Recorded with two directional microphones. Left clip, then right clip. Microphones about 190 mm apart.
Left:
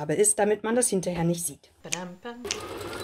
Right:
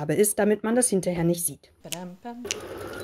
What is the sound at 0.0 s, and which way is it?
Speech, 30° right (ahead or behind).